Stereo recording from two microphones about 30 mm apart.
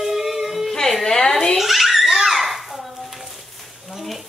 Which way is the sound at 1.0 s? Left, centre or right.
Centre.